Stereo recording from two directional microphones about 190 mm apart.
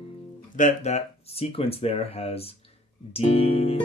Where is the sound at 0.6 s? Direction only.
40° left (ahead or behind).